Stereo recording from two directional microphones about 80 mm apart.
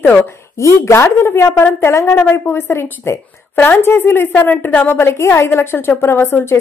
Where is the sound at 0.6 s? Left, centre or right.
Left.